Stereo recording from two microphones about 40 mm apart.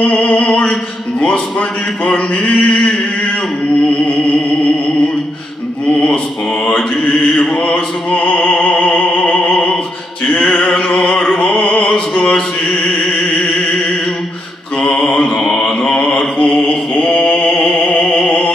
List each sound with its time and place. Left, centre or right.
0.0 s a sound: left
2.0 s a sound: left
7.6 s music: left
11.8 s opera: left
14.8 s mantra: centre
15.0 s mantra: left
17.7 s music: left